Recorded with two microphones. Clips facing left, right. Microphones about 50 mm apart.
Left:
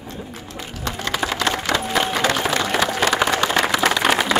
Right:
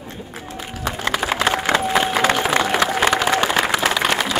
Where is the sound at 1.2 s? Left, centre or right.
Centre.